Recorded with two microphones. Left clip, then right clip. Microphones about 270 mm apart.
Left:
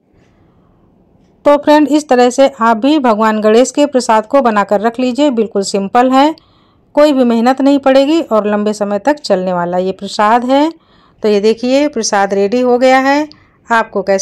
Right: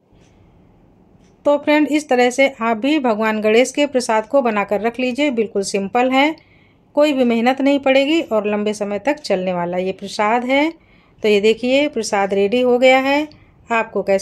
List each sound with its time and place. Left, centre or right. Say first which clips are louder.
1.4 s speech: left 7 dB; left